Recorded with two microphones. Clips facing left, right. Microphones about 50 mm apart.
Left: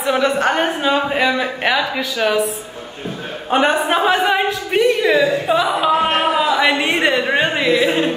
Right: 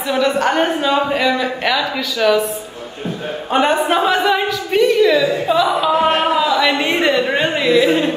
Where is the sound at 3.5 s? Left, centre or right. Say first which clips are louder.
Even; centre.